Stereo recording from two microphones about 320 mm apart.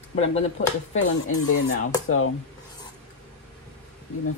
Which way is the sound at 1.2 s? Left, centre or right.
Left.